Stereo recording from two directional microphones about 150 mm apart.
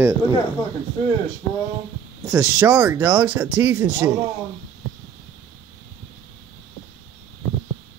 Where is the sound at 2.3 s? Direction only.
15° right (ahead or behind).